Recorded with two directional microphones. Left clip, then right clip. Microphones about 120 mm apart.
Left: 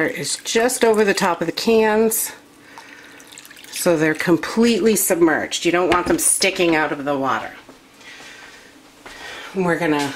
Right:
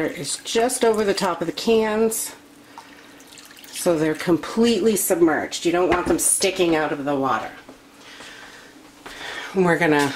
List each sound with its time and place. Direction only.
0.0 s speech: 40° left (ahead or behind)
3.8 s speech: 40° left (ahead or behind)
9.6 s speech: 40° right (ahead or behind)